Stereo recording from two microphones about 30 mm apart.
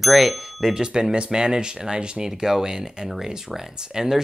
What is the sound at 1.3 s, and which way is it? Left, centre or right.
Speech, right.